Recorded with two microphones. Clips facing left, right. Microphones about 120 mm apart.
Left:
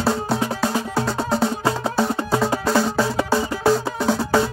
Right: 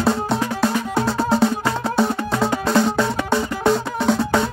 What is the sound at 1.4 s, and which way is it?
Music, 25° left (ahead or behind).